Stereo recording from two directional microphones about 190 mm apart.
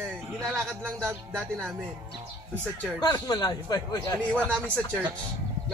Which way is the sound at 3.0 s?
20° left (ahead or behind).